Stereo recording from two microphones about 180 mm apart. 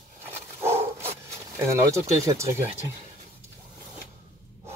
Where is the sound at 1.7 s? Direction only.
15° right (ahead or behind).